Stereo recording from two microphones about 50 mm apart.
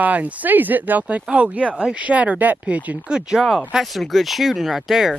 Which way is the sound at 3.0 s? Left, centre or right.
Centre.